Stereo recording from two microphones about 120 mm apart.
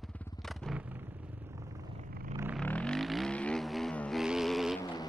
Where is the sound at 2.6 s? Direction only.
10° left (ahead or behind).